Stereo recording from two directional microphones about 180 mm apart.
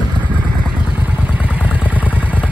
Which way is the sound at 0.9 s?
10° right (ahead or behind).